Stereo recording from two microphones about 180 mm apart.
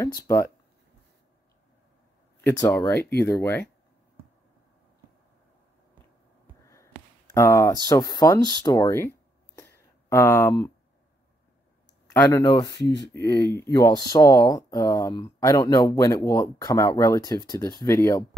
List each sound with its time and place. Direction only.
0.0 s speech: 15° left (ahead or behind)
2.4 s speech: 10° left (ahead or behind)
6.6 s speech: 15° left (ahead or behind)
12.1 s speech: 15° left (ahead or behind)